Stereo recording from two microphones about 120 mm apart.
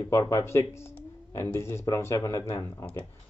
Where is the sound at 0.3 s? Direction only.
25° left (ahead or behind).